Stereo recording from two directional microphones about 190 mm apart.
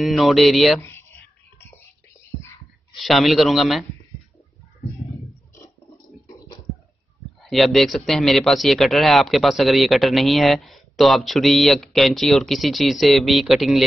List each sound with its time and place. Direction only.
0.0 s a man's voice: centre (ahead or behind)
0.7 s a sound: 10° left (ahead or behind)
3.0 s a man's voice: centre (ahead or behind)
7.4 s a man's voice: centre (ahead or behind)